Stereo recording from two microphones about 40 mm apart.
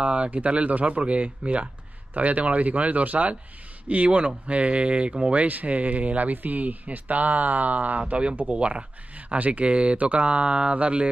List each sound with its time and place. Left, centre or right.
0.0 s speech: right
8.1 s speech: right